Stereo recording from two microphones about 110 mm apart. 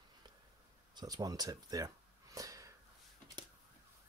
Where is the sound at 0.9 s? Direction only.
40° right (ahead or behind).